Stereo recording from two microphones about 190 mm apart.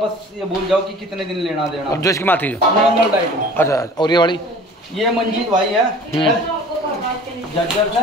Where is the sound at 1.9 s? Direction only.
15° left (ahead or behind).